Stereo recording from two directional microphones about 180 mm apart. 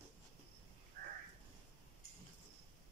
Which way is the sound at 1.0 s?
55° right (ahead or behind).